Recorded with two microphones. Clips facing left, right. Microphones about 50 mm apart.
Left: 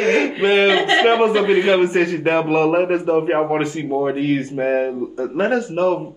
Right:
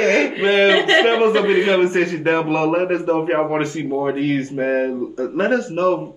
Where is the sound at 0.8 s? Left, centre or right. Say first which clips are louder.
Right 1 dB; right.